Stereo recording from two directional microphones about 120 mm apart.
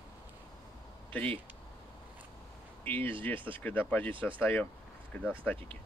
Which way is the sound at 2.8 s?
15° left (ahead or behind).